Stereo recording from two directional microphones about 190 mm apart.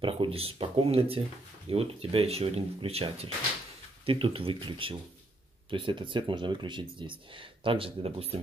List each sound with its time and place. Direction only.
0.0 s speech: 30° right (ahead or behind)